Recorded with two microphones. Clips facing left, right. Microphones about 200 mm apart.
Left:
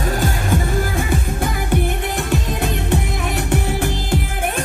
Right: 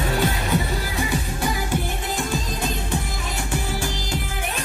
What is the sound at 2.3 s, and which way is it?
Music, 65° left (ahead or behind).